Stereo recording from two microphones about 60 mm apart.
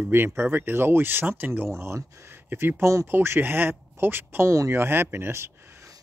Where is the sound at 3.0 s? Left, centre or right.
Right.